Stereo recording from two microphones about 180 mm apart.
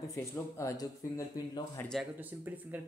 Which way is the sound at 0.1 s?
15° left (ahead or behind).